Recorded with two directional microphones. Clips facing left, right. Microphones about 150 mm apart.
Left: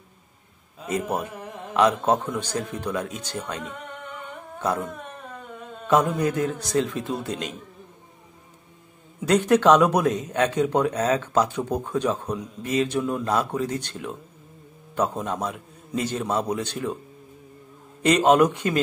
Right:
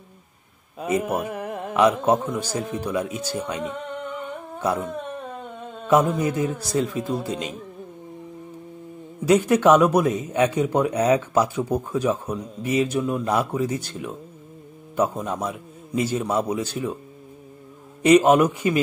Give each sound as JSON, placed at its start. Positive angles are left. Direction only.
{"t": 0.8, "sound": "a man's voice", "side_deg": -60}
{"t": 1.3, "sound": "mantra", "side_deg": -60}
{"t": 1.7, "sound": "speech", "side_deg": -5}
{"t": 5.9, "sound": "a man's voice", "side_deg": -5}
{"t": 9.2, "sound": "speech", "side_deg": -5}
{"t": 18.0, "sound": "a man's voice", "side_deg": -5}